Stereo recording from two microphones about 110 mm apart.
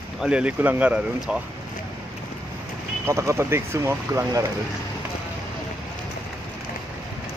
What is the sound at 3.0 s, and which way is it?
Speech, 25° right (ahead or behind).